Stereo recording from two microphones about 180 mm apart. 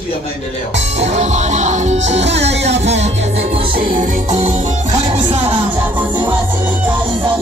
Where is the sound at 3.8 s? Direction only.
45° right (ahead or behind).